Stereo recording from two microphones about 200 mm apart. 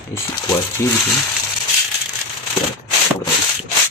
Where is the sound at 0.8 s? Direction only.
15° left (ahead or behind).